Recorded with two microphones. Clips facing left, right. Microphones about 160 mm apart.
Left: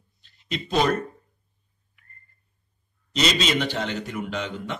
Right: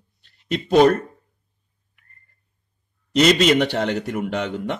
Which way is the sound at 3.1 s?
55° right (ahead or behind).